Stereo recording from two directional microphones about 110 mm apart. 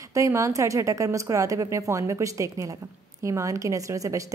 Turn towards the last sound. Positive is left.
turn(degrees=-30)  # may be behind; listen again after turning